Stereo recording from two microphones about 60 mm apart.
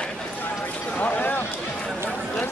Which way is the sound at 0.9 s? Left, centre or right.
Left.